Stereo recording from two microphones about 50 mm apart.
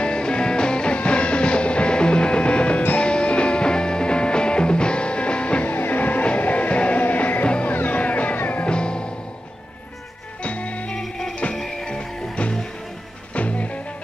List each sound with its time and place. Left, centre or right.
0.0 s music: centre
5.7 s music: left
7.4 s music: left
7.7 s music: left; by 9.1 s centre
10.4 s music: left
11.0 s music: centre; by 13.7 s left